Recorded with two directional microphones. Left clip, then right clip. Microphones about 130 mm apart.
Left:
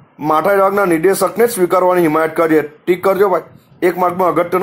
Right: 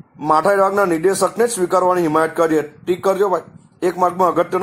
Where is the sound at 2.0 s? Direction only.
40° left (ahead or behind).